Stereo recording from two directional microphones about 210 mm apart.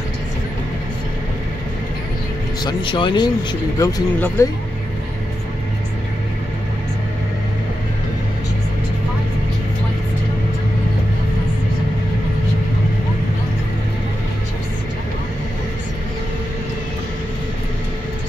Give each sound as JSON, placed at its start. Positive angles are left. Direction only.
{"t": 2.6, "sound": "speech", "side_deg": 25}